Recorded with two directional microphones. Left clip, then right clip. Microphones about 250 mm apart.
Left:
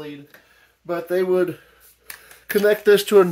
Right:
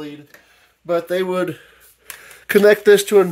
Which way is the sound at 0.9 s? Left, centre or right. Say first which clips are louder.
Right 2 dB; right.